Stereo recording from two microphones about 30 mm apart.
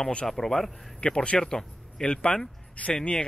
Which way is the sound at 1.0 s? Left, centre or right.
Left.